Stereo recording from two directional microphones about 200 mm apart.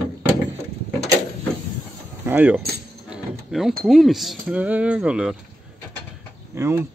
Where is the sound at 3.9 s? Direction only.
Centre (ahead or behind).